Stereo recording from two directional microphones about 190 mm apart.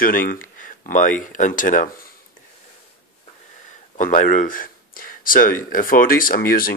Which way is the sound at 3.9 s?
45° left (ahead or behind).